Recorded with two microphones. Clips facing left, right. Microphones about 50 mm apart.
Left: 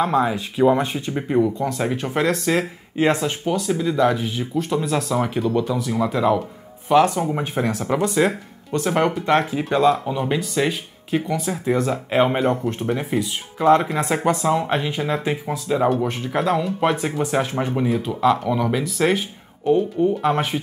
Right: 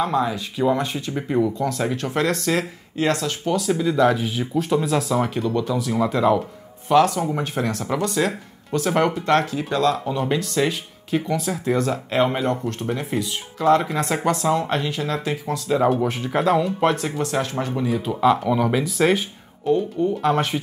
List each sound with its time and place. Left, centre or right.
0.0 s speech: left; by 2.6 s centre
3.0 s speech: centre
3.5 s speech: centre
13.6 s speech: centre
17.8 s speech: centre
19.7 s speech: centre